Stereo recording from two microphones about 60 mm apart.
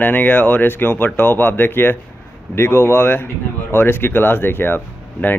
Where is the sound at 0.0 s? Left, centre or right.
Left.